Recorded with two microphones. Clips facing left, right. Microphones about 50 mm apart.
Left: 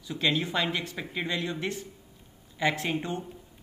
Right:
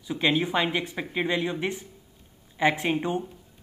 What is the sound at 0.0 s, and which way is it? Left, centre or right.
A man's voice, centre.